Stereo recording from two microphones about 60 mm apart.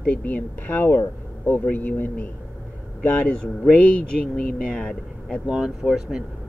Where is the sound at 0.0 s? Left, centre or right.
Left.